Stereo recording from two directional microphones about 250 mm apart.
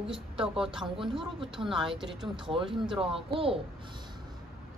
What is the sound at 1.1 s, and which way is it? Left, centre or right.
Speech, right.